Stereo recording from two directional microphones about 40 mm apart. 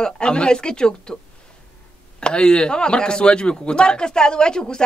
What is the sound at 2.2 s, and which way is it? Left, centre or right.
Speech, left.